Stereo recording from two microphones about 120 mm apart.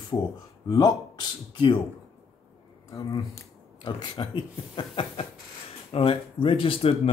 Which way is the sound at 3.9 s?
45° left (ahead or behind).